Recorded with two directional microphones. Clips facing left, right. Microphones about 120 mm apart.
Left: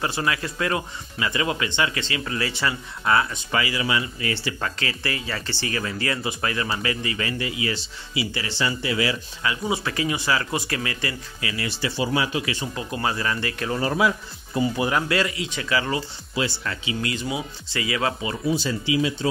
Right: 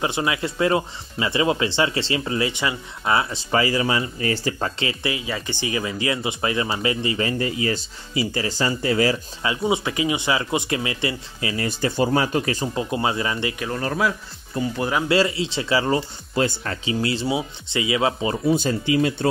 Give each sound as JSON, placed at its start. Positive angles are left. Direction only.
{"t": 0.0, "sound": "speech", "side_deg": -20}
{"t": 3.5, "sound": "speech", "side_deg": -35}
{"t": 9.4, "sound": "speech", "side_deg": -25}
{"t": 11.5, "sound": "speech", "side_deg": -45}
{"t": 12.7, "sound": "speech", "side_deg": -20}
{"t": 13.7, "sound": "speech", "side_deg": 5}
{"t": 15.0, "sound": "speech", "side_deg": -30}
{"t": 16.3, "sound": "speech", "side_deg": -40}
{"t": 18.5, "sound": "speech", "side_deg": -50}